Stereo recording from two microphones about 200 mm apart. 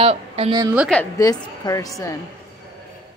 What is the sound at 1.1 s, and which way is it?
A woman's voice, 20° left (ahead or behind).